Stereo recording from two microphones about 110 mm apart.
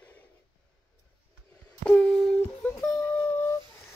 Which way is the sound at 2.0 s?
5° left (ahead or behind).